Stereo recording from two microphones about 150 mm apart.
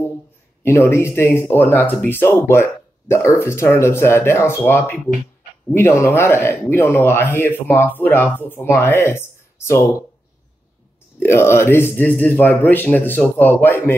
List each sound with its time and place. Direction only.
0.7 s speech: 15° left (ahead or behind)
11.1 s speech: 15° left (ahead or behind)